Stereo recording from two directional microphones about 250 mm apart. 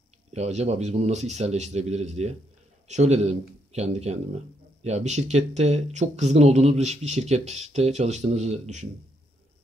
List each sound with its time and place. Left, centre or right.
0.3 s speech: right